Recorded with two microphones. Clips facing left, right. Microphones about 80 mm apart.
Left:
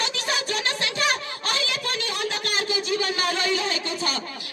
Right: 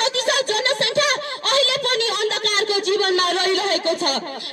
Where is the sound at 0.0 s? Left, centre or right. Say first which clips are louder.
Right 7 dB; right.